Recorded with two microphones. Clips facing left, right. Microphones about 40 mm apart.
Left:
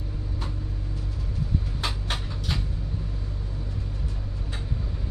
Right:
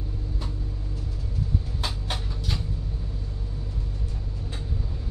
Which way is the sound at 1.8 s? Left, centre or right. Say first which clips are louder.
Left 1 dB; centre.